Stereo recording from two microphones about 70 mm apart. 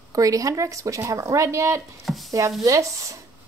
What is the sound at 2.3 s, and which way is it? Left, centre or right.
Chopping, right.